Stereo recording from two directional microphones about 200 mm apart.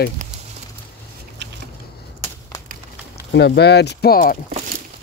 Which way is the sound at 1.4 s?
60° right (ahead or behind).